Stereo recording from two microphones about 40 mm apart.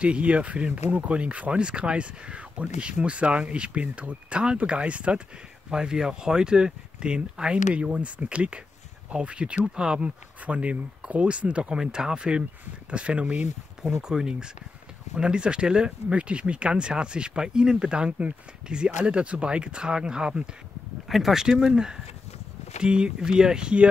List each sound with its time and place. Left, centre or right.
0.0 s speech: right
5.7 s speech: centre
10.4 s speech: right
14.0 s speech: centre
21.1 s speech: centre; by 23.9 s right